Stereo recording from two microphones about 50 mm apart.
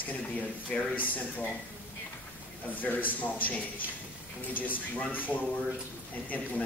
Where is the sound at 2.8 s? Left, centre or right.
Left.